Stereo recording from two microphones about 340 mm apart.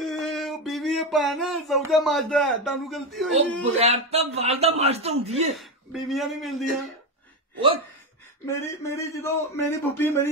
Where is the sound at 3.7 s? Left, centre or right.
Centre.